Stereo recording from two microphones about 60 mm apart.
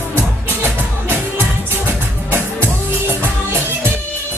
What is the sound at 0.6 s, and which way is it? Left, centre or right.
Music, right.